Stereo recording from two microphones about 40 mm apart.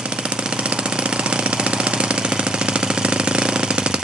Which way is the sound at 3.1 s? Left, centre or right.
Right.